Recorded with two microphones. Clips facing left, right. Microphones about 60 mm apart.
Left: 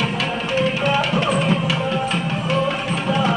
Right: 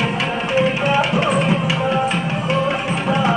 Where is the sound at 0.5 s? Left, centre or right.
Right.